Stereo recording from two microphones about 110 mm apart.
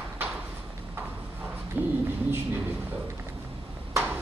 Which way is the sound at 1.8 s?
15° right (ahead or behind).